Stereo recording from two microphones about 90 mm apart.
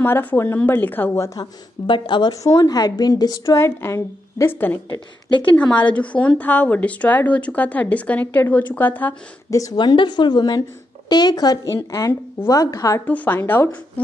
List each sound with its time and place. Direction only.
0.0 s a woman's voice: 20° left (ahead or behind)
1.4 s a woman's voice: 60° left (ahead or behind)
2.4 s a woman's voice: 40° left (ahead or behind)
3.4 s a woman's voice: 30° left (ahead or behind)
5.3 s a woman's voice: 65° left (ahead or behind)
5.6 s a woman's voice: 15° left (ahead or behind)
9.5 s a woman's voice: 40° left (ahead or behind)
9.8 s a woman's voice: 55° left (ahead or behind)
11.7 s a woman's voice: 35° left (ahead or behind)
13.0 s a woman's voice: 20° left (ahead or behind)